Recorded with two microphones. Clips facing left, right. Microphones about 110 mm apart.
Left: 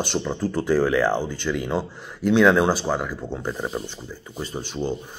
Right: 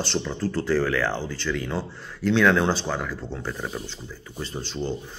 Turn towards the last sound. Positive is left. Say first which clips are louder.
# left 2 dB
turn(degrees=15)  # may be behind; listen again after turning